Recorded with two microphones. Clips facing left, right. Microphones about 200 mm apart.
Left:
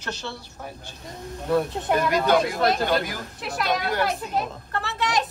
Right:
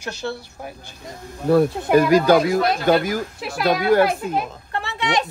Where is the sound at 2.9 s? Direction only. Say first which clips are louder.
Right 7 dB; 45° right (ahead or behind).